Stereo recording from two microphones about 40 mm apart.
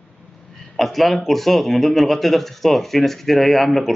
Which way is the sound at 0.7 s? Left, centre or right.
Centre.